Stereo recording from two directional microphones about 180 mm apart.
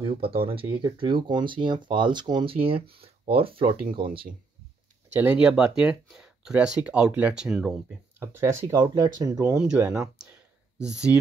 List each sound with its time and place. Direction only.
0.0 s speech: 30° right (ahead or behind)
3.8 s speech: 50° right (ahead or behind)
5.1 s speech: 10° right (ahead or behind)
8.2 s speech: 15° right (ahead or behind)